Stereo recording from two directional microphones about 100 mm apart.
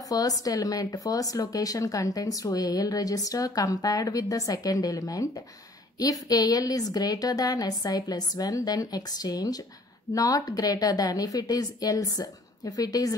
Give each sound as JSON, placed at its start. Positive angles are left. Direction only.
{"t": 0.1, "sound": "speech", "side_deg": 35}